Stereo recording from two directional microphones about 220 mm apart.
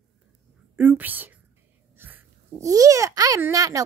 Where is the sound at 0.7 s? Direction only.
10° right (ahead or behind).